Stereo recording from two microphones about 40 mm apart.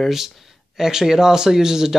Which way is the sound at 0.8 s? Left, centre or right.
Centre.